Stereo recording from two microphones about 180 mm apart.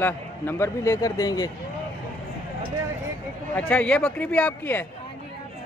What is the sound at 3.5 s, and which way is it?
Speech, 5° left (ahead or behind).